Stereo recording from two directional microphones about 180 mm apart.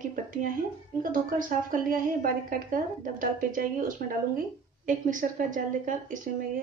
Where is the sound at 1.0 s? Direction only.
50° right (ahead or behind).